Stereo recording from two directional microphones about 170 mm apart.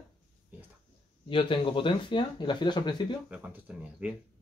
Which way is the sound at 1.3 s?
30° left (ahead or behind).